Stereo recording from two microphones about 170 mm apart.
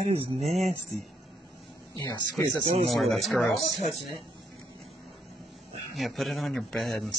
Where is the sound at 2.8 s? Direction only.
Centre (ahead or behind).